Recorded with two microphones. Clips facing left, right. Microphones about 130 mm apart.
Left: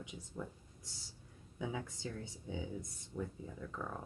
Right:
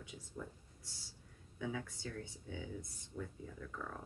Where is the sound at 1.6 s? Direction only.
20° left (ahead or behind).